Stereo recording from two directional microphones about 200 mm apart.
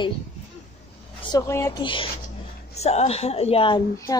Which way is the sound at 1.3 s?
15° left (ahead or behind).